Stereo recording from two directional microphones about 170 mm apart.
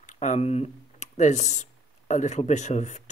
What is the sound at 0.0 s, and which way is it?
Speech, 45° left (ahead or behind).